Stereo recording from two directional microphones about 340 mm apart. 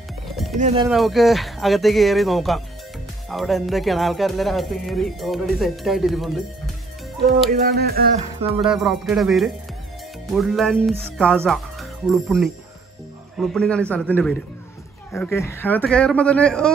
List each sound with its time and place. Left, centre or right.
0.6 s speech: centre
0.8 s speech: centre
7.6 s speech: right
8.5 s speech: centre